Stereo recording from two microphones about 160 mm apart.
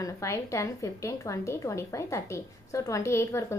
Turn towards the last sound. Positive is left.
turn(degrees=20)  # may be behind; listen again after turning